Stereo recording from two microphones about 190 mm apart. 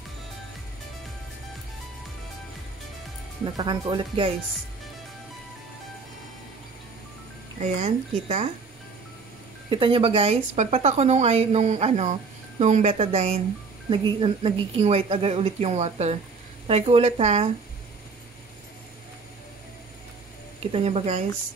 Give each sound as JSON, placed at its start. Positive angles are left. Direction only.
{"t": 3.4, "sound": "speech", "side_deg": -25}
{"t": 7.6, "sound": "a woman's voice", "side_deg": -40}
{"t": 9.7, "sound": "a woman's voice", "side_deg": -25}
{"t": 20.7, "sound": "a woman's voice", "side_deg": -35}